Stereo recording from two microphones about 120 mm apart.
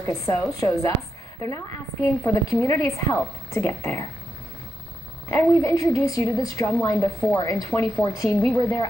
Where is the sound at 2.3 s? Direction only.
25° left (ahead or behind).